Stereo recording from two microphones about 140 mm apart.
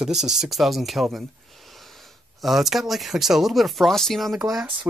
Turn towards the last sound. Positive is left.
turn(degrees=-5)  # may be behind; listen again after turning